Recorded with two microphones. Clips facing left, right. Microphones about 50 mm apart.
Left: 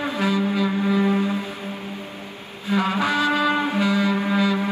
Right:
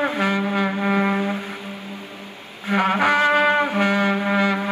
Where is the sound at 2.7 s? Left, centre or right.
Right.